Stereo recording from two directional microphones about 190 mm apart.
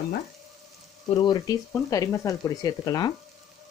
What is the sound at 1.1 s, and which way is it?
Speech, 20° left (ahead or behind).